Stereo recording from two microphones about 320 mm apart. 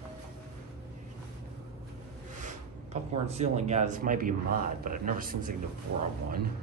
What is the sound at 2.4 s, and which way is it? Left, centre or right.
Speech, centre.